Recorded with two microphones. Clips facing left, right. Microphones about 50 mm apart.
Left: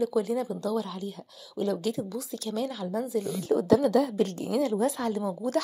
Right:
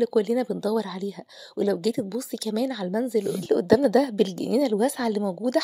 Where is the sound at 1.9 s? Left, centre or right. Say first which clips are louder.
Right 5 dB; right.